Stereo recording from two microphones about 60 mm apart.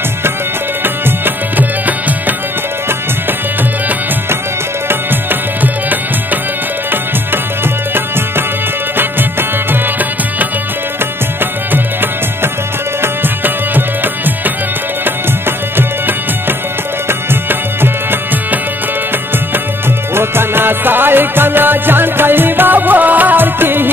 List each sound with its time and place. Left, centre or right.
0.8 s music: right
4.8 s tabla: right
9.7 s music: right
13.0 s music: right
17.3 s music: right
20.2 s music: right